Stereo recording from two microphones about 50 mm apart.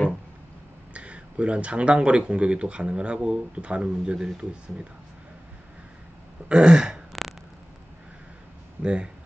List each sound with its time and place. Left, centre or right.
0.9 s speech: right
6.5 s throat clearing: centre
7.1 s a sound: centre
8.8 s speech: right